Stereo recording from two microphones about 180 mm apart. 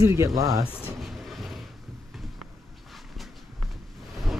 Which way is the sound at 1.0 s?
Centre (ahead or behind).